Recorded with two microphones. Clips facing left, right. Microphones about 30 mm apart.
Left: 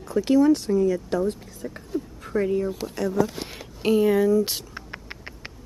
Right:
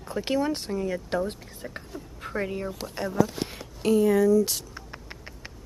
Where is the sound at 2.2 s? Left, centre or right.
Centre.